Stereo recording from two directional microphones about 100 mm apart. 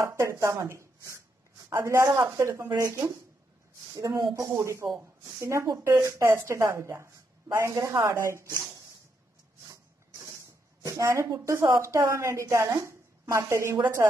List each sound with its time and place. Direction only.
0.0 s a woman's voice: 30° right (ahead or behind)
10.8 s a woman's voice: 30° right (ahead or behind)